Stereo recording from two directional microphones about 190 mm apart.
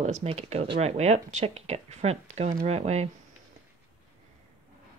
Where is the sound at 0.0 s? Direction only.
35° right (ahead or behind).